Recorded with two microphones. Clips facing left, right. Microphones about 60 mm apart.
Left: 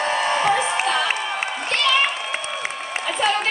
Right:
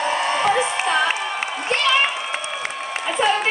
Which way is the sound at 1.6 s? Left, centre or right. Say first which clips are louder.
Right 2 dB; centre.